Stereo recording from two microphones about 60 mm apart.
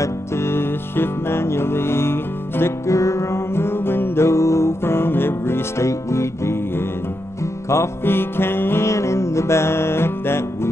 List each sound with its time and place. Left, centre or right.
0.0 s music: left
2.9 s music: left
5.9 s music: left
7.7 s music: left